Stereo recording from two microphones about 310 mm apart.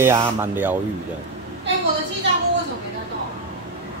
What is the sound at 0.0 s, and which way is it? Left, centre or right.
Speech, centre.